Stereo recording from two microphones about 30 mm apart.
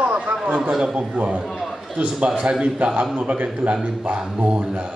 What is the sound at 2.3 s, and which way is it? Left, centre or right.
Speech, right.